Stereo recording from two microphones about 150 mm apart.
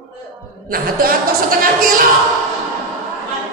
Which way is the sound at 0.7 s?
75° right (ahead or behind).